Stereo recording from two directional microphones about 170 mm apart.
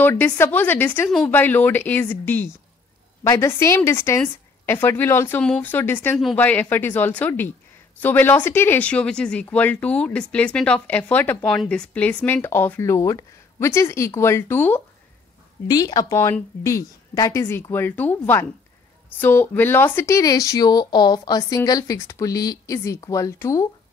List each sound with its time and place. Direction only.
0.0 s speech: 15° left (ahead or behind)
15.7 s speech: 25° left (ahead or behind)